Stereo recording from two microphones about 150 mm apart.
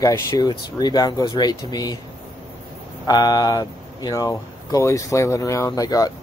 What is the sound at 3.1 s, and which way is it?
Speech, 25° left (ahead or behind).